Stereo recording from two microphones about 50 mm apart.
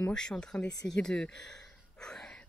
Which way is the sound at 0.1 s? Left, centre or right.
Centre.